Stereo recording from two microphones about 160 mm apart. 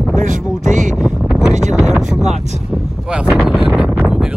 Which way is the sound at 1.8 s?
Centre (ahead or behind).